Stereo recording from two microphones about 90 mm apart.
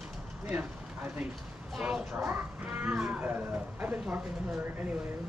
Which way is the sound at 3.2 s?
20° right (ahead or behind).